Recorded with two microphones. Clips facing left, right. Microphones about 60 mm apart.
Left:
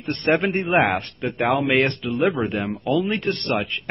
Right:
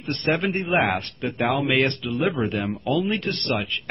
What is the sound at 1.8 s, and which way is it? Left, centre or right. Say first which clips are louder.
Speech: left 2 dB; centre.